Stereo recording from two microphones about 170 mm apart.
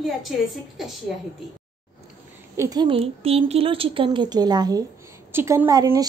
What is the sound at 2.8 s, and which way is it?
A woman's voice, 35° right (ahead or behind).